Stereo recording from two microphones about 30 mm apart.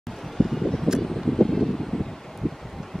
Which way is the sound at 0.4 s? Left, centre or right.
Left.